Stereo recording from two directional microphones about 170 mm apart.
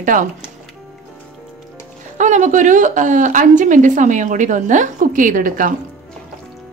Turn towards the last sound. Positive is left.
turn(degrees=-55)  # may be behind; listen again after turning